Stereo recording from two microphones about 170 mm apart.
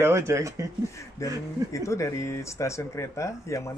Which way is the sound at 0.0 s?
15° right (ahead or behind).